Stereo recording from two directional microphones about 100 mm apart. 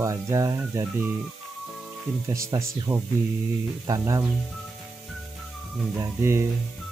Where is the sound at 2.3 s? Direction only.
30° right (ahead or behind).